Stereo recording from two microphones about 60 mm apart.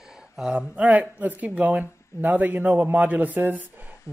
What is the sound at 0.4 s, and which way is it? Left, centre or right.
A woman's voice, centre.